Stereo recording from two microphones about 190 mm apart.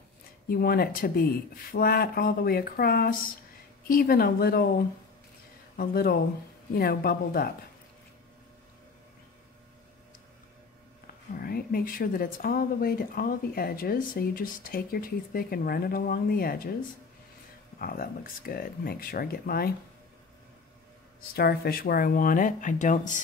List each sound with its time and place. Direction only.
0.5 s speech: 55° left (ahead or behind)
5.8 s speech: 50° left (ahead or behind)
11.3 s speech: 50° left (ahead or behind)
17.7 s speech: 50° left (ahead or behind)
21.3 s speech: 55° left (ahead or behind)